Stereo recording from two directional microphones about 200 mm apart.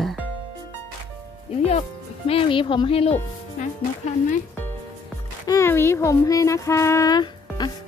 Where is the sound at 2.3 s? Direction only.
25° left (ahead or behind).